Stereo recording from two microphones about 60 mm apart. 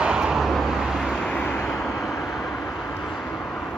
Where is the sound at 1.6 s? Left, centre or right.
Centre.